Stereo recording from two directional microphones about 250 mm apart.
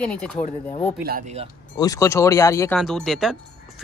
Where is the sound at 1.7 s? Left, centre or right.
Centre.